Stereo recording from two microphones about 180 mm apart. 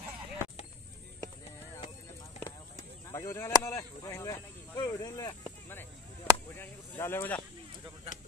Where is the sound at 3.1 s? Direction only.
15° left (ahead or behind).